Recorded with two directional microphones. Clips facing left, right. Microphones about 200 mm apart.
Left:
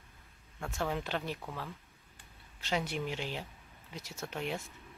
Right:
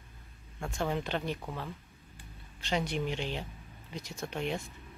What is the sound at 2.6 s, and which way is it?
Speech, 5° left (ahead or behind).